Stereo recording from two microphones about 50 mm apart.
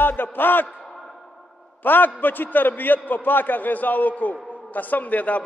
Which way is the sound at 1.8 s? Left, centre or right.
Left.